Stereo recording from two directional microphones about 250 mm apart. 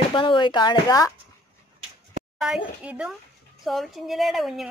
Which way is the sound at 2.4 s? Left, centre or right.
Centre.